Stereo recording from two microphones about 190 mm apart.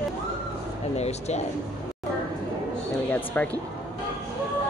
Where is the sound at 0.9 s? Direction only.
35° left (ahead or behind).